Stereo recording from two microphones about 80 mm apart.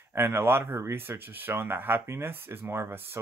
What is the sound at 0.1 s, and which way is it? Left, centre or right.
Speech, right.